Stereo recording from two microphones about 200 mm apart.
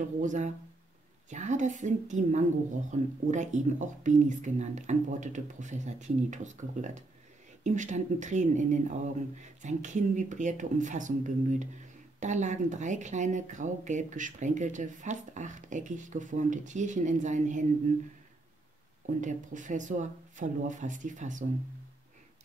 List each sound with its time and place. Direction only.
0.2 s a woman's voice: 40° right (ahead or behind)
19.0 s a woman's voice: 40° right (ahead or behind)